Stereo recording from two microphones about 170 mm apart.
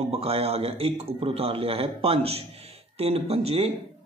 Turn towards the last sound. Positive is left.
turn(degrees=-35)  # may be behind; listen again after turning